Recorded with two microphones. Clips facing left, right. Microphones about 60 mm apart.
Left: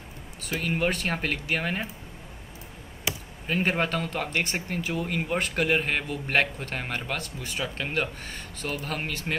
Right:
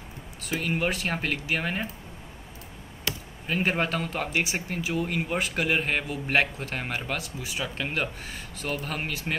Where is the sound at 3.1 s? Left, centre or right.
Centre.